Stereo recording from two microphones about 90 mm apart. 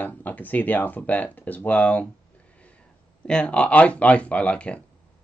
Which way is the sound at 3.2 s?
10° left (ahead or behind).